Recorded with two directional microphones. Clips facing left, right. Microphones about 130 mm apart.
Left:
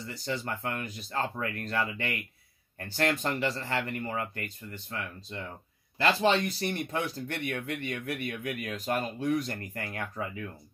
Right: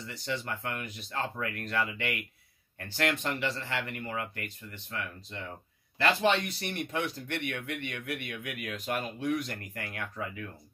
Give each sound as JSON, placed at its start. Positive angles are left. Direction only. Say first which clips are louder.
{"t": 0.0, "sound": "speech", "louder": "left 1 dB", "side_deg": 35}